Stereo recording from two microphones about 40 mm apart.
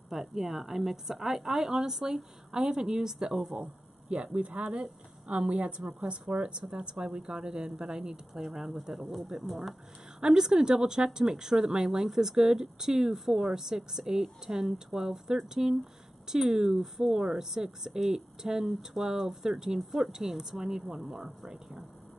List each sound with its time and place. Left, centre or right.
0.1 s speech: centre
3.5 s a woman's voice: right; by 9.8 s centre
10.2 s speech: centre